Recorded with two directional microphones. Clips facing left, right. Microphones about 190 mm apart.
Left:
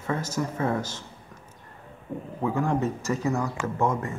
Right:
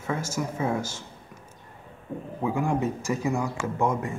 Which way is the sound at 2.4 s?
10° right (ahead or behind).